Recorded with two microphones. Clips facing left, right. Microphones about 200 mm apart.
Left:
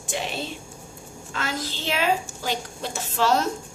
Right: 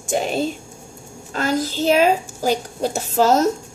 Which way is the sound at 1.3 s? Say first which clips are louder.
Right 10 dB; 40° right (ahead or behind).